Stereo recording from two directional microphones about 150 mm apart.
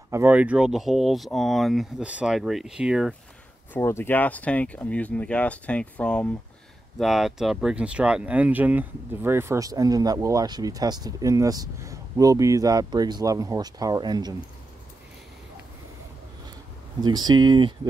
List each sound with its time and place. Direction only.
0.1 s speech: 10° right (ahead or behind)
3.7 s speech: 15° left (ahead or behind); by 14.3 s 25° right (ahead or behind)
17.0 s speech: 30° right (ahead or behind)